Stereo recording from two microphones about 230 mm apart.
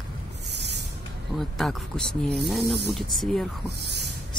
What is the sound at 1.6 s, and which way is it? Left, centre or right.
Speech, centre.